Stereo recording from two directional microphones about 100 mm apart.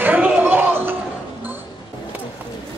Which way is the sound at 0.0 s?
15° right (ahead or behind).